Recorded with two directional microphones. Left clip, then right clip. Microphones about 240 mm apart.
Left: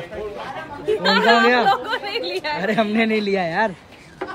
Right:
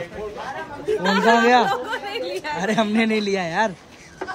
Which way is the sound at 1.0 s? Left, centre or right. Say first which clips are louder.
Left 2 dB; centre.